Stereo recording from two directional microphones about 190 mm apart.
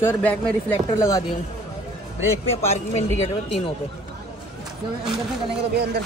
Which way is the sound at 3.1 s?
Centre (ahead or behind).